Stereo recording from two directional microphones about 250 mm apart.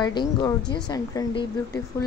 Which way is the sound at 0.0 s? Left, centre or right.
Centre.